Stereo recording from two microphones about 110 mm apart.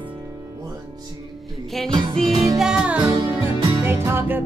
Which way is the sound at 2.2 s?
65° right (ahead or behind).